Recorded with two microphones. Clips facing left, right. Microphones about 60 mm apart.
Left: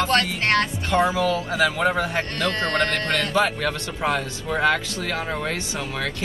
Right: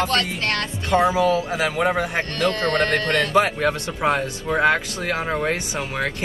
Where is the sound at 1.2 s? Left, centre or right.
Right.